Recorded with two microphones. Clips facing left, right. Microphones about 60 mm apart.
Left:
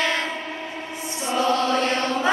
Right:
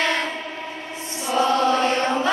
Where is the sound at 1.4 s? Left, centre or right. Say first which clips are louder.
Right 2 dB; right.